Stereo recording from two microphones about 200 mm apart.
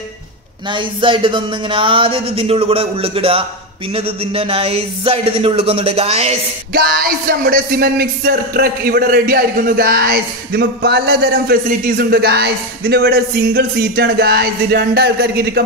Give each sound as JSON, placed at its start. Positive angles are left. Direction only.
{"t": 0.7, "sound": "speech", "side_deg": -25}
{"t": 6.7, "sound": "music", "side_deg": -50}